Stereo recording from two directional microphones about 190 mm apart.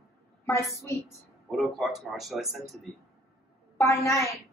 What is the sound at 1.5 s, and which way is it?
A man's voice, centre (ahead or behind).